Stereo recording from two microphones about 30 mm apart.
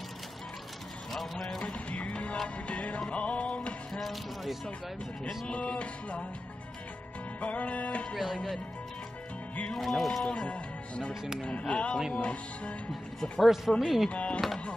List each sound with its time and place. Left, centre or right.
1.1 s speech: centre
1.9 s music: left
4.0 s speech: centre
5.8 s music: left
7.3 s music: left
9.8 s speech: centre
10.3 s music: left
11.6 s speech: left
12.2 s music: left
13.7 s speech: centre
14.1 s music: left